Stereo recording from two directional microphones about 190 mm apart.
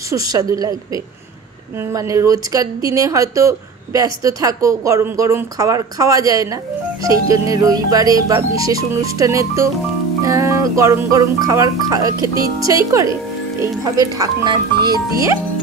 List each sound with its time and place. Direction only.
0.1 s speech: 20° right (ahead or behind)